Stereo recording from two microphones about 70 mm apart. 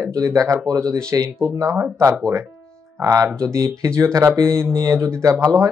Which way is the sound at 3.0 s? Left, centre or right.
Right.